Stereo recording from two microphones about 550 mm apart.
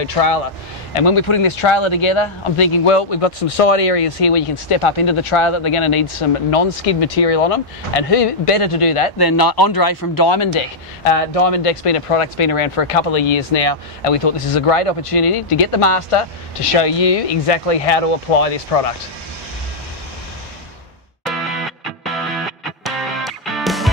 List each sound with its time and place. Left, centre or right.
0.0 s speech: left
0.9 s speech: left
6.5 s speech: left
9.2 s speech: left
11.1 s speech: left
22.8 s music: centre